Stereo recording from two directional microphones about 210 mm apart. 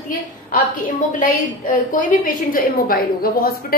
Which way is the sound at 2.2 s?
40° left (ahead or behind).